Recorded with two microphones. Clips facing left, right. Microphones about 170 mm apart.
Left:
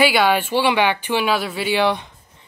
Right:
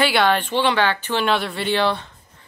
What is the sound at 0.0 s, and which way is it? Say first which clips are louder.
A woman's voice: left 2 dB; 5° left (ahead or behind).